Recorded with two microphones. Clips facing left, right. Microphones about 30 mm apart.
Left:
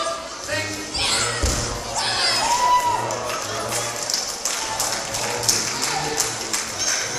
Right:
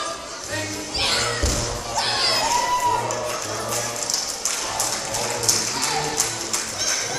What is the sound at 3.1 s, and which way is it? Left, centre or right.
Music, left.